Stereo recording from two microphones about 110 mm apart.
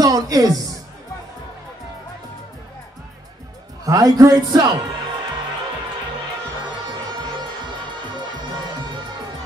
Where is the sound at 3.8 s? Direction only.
35° right (ahead or behind).